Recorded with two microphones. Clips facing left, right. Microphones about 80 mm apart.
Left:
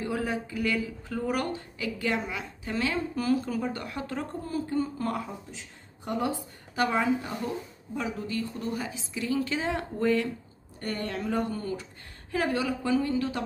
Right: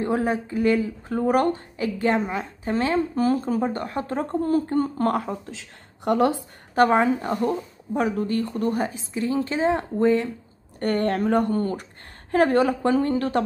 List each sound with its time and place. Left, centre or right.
0.0 s a woman's voice: right
6.7 s a woman's voice: right
10.8 s a woman's voice: right